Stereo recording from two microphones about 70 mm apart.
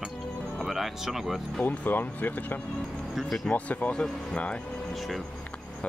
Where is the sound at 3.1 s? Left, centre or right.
Centre.